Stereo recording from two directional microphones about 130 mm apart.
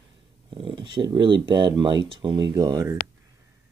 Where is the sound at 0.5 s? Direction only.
40° right (ahead or behind).